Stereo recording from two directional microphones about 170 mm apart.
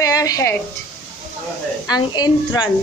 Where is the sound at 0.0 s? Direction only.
20° left (ahead or behind).